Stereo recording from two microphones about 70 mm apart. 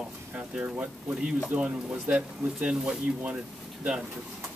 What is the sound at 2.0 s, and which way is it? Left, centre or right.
Speech, centre.